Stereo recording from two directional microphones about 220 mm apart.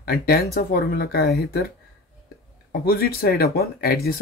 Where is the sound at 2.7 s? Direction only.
45° left (ahead or behind).